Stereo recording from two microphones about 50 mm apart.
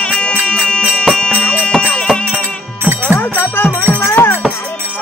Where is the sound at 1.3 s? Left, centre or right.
Left.